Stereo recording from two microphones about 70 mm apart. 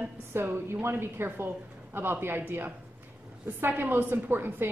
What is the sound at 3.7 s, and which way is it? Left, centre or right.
Speech, right.